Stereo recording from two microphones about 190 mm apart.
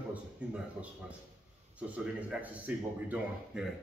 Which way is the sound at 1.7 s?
5° right (ahead or behind).